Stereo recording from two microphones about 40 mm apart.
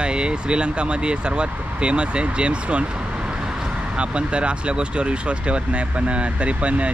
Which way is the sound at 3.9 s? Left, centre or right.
Right.